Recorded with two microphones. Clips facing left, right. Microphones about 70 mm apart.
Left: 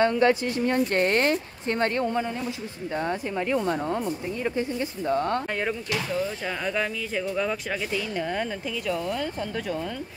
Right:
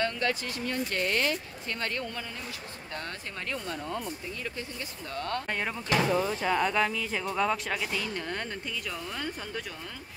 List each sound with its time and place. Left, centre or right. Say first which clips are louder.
0.0 s speech: left 9 dB; left
0.7 s speech: left 6 dB; left
2.9 s speech: left 11 dB; centre
5.5 s speech: left 4 dB; centre
5.9 s speech: right 2 dB; right
6.4 s speech: right 2 dB; centre